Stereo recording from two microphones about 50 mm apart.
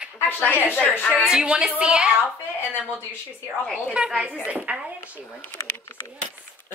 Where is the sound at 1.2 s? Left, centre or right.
Centre.